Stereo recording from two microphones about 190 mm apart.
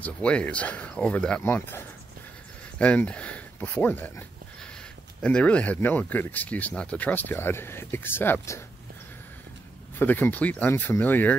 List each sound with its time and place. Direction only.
0.0 s speech: 5° left (ahead or behind)
5.2 s speech: 5° left (ahead or behind)
9.9 s speech: 10° left (ahead or behind)